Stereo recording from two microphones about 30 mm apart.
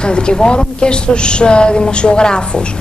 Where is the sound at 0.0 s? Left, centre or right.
Left.